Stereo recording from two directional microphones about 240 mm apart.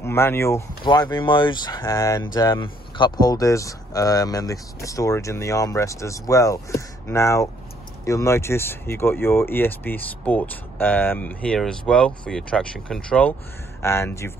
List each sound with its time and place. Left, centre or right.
0.0 s speech: centre